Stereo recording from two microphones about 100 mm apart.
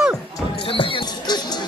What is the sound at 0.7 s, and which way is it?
Music, 60° left (ahead or behind).